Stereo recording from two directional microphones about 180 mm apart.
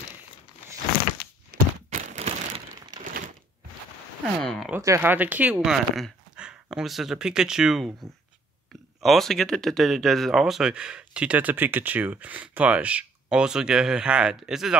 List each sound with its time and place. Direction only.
1.5 s crumpling: 45° right (ahead or behind)
4.4 s speech: centre (ahead or behind)
4.7 s speech: 15° right (ahead or behind)